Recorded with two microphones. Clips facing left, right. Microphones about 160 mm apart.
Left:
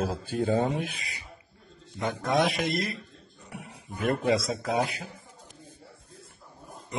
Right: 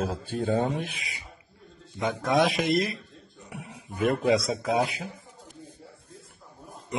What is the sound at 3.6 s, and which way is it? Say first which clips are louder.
Speech: right 4 dB; centre (ahead or behind).